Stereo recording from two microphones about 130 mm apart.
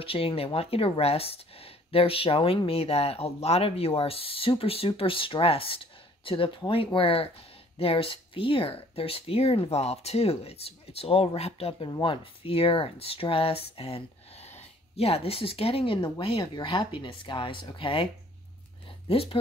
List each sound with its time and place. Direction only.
0.0 s speech: 45° left (ahead or behind)
19.0 s speech: 50° left (ahead or behind)